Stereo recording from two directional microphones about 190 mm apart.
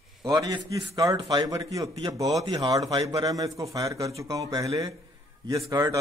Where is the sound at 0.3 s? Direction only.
20° right (ahead or behind).